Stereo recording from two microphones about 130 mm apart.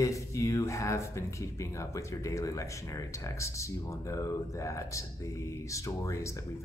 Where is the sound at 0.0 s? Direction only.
25° left (ahead or behind).